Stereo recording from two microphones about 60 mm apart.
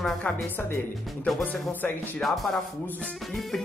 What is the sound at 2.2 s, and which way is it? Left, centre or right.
Music, centre.